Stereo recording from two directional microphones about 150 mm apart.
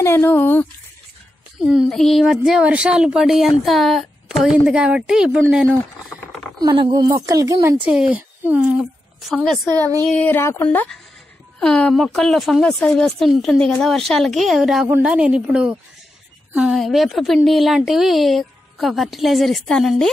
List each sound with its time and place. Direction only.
0.0 s speech: 15° left (ahead or behind)
1.6 s speech: 5° right (ahead or behind)
6.6 s speech: 30° right (ahead or behind)
8.1 s speech: 10° right (ahead or behind)
9.3 s speech: centre (ahead or behind)
9.7 s speech: 25° right (ahead or behind)
10.0 s speech: 10° left (ahead or behind)